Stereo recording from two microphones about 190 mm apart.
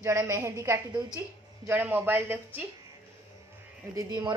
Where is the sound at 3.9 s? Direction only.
25° right (ahead or behind).